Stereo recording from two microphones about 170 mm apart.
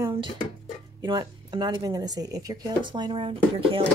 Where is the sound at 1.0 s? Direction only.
25° right (ahead or behind).